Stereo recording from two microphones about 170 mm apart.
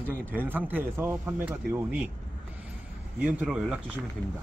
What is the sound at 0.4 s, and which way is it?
Speech, 10° right (ahead or behind).